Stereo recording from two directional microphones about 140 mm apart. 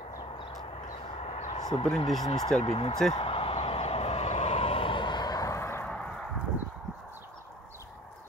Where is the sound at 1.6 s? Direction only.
30° left (ahead or behind).